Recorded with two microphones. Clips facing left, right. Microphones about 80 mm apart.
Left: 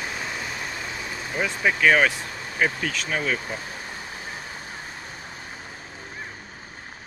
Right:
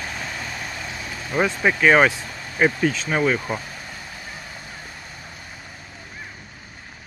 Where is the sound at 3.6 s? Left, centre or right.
Left.